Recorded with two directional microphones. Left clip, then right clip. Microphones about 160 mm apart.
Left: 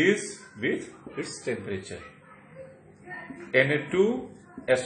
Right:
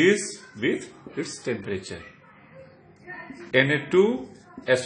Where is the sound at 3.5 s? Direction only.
60° right (ahead or behind).